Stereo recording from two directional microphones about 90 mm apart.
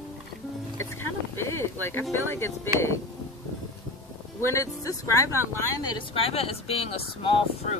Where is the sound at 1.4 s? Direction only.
30° left (ahead or behind).